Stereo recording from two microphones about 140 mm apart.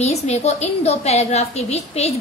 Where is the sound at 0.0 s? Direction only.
50° left (ahead or behind).